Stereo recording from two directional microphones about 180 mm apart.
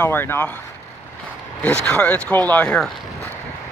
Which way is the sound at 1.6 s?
5° left (ahead or behind).